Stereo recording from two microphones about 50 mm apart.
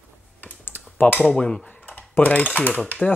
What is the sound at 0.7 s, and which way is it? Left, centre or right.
Typing, left.